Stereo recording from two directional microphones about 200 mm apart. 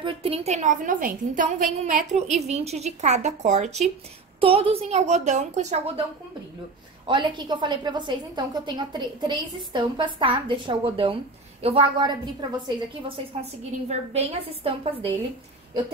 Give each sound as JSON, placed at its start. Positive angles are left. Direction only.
{"t": 0.0, "sound": "a woman's voice", "side_deg": -30}
{"t": 7.1, "sound": "a woman's voice", "side_deg": -25}